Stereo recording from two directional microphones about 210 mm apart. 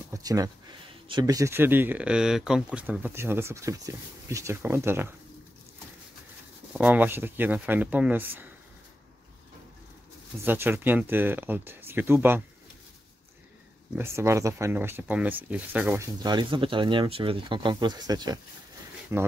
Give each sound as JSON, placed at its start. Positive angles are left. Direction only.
{"t": 0.1, "sound": "speech", "side_deg": -15}
{"t": 6.7, "sound": "speech", "side_deg": -5}
{"t": 10.4, "sound": "speech", "side_deg": -10}
{"t": 13.9, "sound": "speech", "side_deg": -10}
{"t": 16.2, "sound": "speech", "side_deg": -20}